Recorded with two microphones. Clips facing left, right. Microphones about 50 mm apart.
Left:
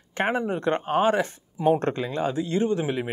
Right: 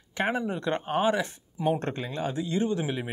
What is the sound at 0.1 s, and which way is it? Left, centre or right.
Speech, left.